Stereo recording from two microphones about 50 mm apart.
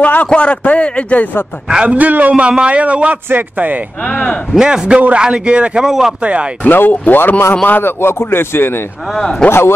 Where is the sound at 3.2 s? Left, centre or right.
Right.